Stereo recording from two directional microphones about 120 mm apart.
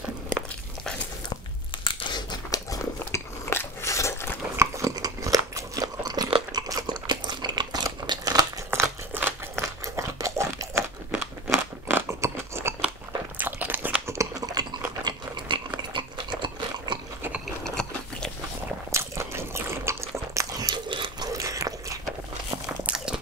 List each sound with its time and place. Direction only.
1.9 s biting: 45° left (ahead or behind); by 4.3 s 25° left (ahead or behind)
4.6 s biting: 25° right (ahead or behind)
8.6 s crumpling: 20° right (ahead or behind)
9.9 s a sound: 25° right (ahead or behind)
11.1 s crunch: 10° right (ahead or behind)
11.5 s scissors: 25° right (ahead or behind)
13.4 s crunch: 15° right (ahead or behind)
14.1 s a sound: 30° right (ahead or behind)
17.6 s biting: 5° left (ahead or behind)
18.9 s biting: 25° right (ahead or behind); by 21.3 s 40° right (ahead or behind)
21.3 s biting: 25° right (ahead or behind)
22.8 s a sound: 5° right (ahead or behind)